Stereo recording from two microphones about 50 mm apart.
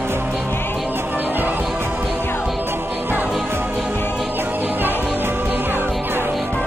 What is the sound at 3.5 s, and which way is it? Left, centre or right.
Music, right.